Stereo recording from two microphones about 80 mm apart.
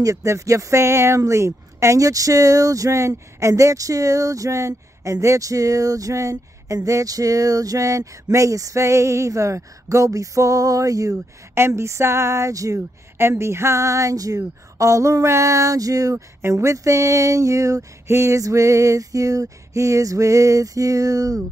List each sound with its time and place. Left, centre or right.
0.0 s speech: right
11.5 s speech: right
16.3 s speech: right